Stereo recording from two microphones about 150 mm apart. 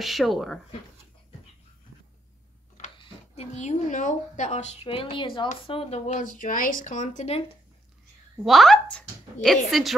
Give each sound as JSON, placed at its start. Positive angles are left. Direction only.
{"t": 0.0, "sound": "speech", "side_deg": 0}
{"t": 3.0, "sound": "speech", "side_deg": 45}
{"t": 6.3, "sound": "speech", "side_deg": 65}
{"t": 8.5, "sound": "speech", "side_deg": 0}